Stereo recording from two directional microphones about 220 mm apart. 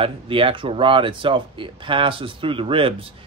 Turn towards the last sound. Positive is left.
turn(degrees=-25)  # may be behind; listen again after turning